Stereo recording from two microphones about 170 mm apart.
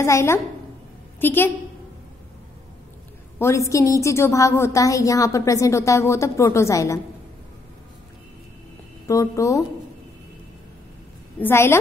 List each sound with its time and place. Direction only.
0.0 s a woman's voice: 15° left (ahead or behind)
3.3 s a woman's voice: 15° left (ahead or behind)
9.0 s speech: 20° left (ahead or behind)
11.3 s a woman's voice: 15° left (ahead or behind)